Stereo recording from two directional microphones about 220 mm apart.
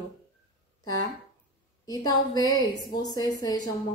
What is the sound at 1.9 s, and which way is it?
A woman's voice, 15° left (ahead or behind).